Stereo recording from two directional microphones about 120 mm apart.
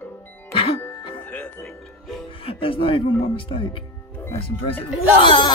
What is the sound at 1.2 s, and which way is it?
Music, 15° left (ahead or behind).